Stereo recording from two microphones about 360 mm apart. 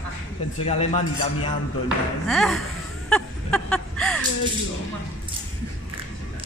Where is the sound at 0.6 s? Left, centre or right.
Centre.